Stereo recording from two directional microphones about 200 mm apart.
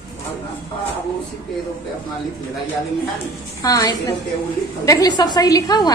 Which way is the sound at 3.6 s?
20° left (ahead or behind).